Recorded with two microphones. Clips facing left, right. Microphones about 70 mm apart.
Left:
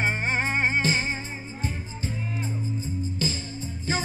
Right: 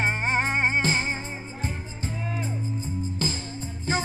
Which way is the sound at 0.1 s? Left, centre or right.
Right.